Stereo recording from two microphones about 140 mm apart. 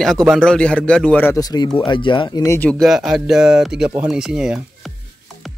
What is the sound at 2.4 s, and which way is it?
Speech, 15° left (ahead or behind).